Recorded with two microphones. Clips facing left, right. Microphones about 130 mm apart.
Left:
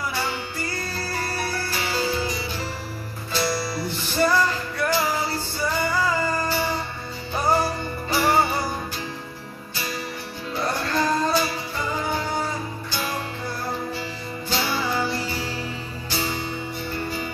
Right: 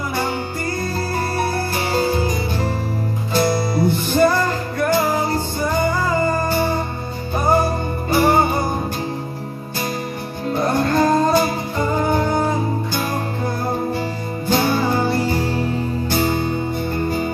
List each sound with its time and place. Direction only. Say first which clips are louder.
1.1 s music: right 6 dB; 50° right (ahead or behind)
10.5 s music: right 7 dB; 50° right (ahead or behind)